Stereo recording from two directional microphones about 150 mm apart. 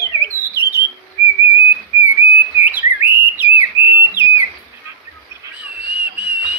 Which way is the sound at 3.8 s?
15° right (ahead or behind).